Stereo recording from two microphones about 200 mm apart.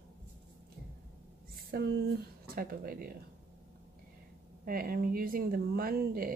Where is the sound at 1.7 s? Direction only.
50° right (ahead or behind).